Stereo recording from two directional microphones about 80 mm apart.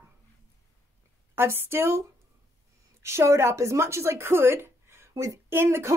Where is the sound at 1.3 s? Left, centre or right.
Right.